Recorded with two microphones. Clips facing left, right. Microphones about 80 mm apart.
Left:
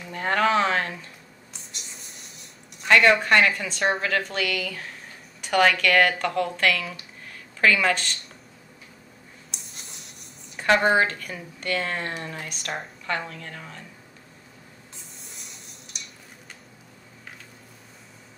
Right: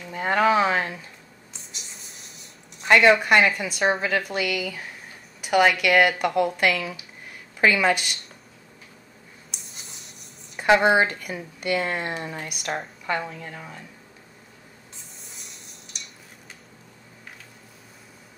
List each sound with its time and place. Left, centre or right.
0.1 s speech: centre
1.5 s a sound: centre
2.9 s speech: centre
9.5 s writing: centre
10.7 s speech: centre
15.3 s a sound: centre